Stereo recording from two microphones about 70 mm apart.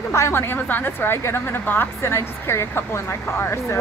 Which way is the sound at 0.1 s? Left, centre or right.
Left.